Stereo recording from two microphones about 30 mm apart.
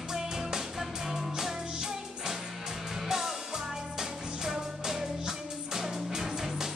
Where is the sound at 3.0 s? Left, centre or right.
Centre.